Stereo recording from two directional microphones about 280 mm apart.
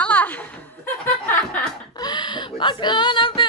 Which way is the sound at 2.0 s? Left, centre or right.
Centre.